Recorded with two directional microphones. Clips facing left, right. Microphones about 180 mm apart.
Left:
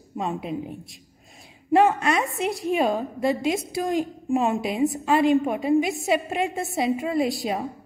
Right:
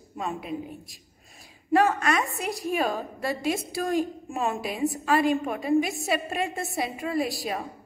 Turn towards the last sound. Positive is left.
turn(degrees=20)  # may be behind; listen again after turning